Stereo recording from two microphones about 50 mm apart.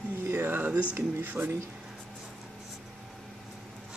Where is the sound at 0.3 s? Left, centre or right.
Right.